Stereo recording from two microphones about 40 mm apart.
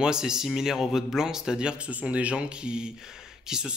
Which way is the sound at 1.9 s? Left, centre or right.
Right.